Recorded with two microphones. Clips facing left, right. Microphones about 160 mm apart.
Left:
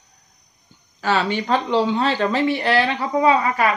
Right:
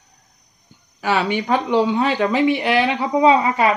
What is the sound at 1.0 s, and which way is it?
Speech, 15° right (ahead or behind).